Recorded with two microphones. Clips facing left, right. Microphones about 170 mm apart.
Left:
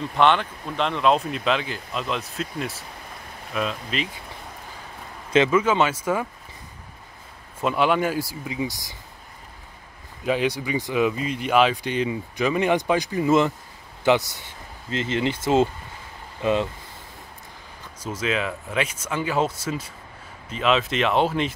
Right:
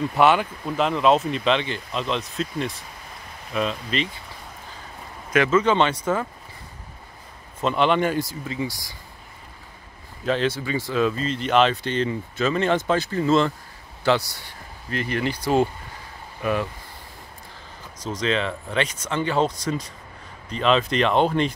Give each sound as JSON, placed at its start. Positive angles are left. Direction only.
{"t": 0.1, "sound": "speech", "side_deg": -5}
{"t": 3.5, "sound": "speech", "side_deg": 5}
{"t": 5.5, "sound": "speech", "side_deg": 5}
{"t": 7.6, "sound": "speech", "side_deg": 5}
{"t": 10.2, "sound": "speech", "side_deg": 10}
{"t": 17.9, "sound": "speech", "side_deg": 10}